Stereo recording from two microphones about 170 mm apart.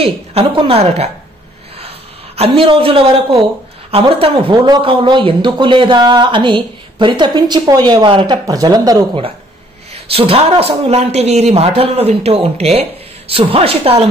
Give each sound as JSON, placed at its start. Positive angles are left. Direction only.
{"t": 0.0, "sound": "speech", "side_deg": -35}
{"t": 2.3, "sound": "speech", "side_deg": -35}
{"t": 9.9, "sound": "speech", "side_deg": -35}